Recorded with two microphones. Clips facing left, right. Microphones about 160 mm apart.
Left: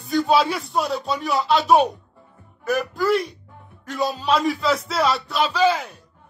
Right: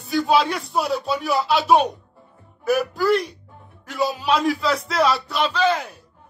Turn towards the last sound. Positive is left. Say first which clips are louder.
# left 1 dB
turn(degrees=0)  # may be behind; listen again after turning